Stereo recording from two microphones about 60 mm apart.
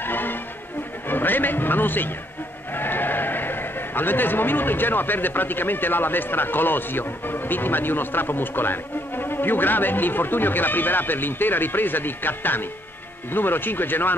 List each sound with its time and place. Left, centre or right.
0.0 s music: left
1.0 s a man's voice: left